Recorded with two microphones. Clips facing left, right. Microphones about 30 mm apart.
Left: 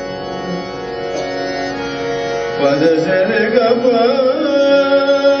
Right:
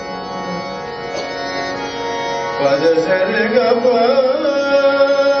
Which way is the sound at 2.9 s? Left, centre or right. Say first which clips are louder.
Left 1 dB; left.